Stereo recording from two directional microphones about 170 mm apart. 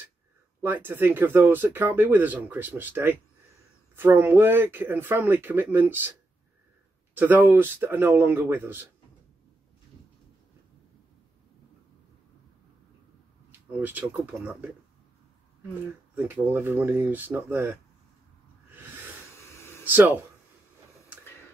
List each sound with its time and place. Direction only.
0.8 s speech: 10° right (ahead or behind)
7.2 s speech: 10° right (ahead or behind)
13.5 s speech: 10° right (ahead or behind)
16.2 s speech: 10° right (ahead or behind)
19.3 s a sound: 15° left (ahead or behind)
19.8 s speech: 10° right (ahead or behind)